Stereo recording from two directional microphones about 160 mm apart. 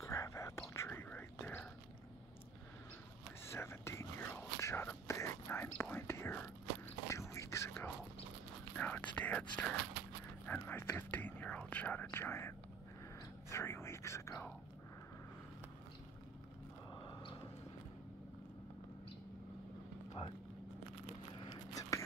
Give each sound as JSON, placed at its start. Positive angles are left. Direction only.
{"t": 0.0, "sound": "whispering", "side_deg": 20}
{"t": 3.4, "sound": "whispering", "side_deg": 15}
{"t": 16.9, "sound": "a sound", "side_deg": 25}
{"t": 21.5, "sound": "whispering", "side_deg": 20}